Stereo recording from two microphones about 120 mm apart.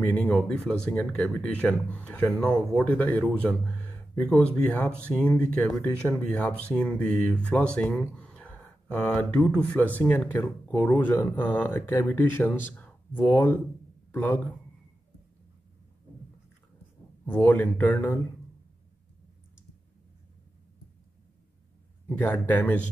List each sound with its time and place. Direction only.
0.0 s speech: 15° left (ahead or behind)
0.3 s speech: centre (ahead or behind)
10.7 s speech: 35° left (ahead or behind)
11.0 s speech: 15° left (ahead or behind)
12.7 s a sound: 15° left (ahead or behind)
14.1 s speech: 15° left (ahead or behind)
17.3 s speech: 15° left (ahead or behind)
22.2 s speech: 15° left (ahead or behind)